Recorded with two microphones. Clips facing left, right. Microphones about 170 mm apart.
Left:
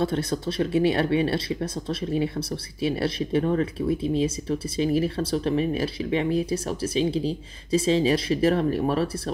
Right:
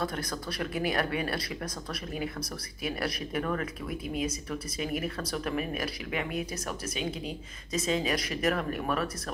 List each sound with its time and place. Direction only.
0.0 s speech: 30° left (ahead or behind)